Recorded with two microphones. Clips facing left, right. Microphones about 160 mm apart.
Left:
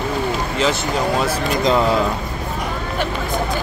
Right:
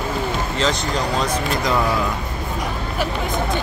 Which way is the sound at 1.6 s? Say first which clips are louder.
Left 5 dB; 25° left (ahead or behind).